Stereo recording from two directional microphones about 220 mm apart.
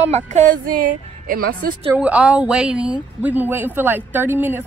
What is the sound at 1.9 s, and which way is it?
A woman's voice, 5° right (ahead or behind).